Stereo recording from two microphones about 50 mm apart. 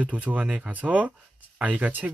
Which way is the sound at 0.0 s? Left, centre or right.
Right.